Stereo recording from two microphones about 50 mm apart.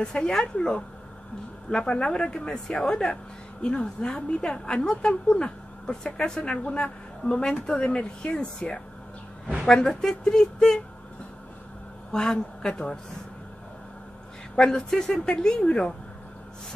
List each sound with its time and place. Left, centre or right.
0.0 s a woman's voice: centre
12.1 s a woman's voice: centre
14.5 s a woman's voice: centre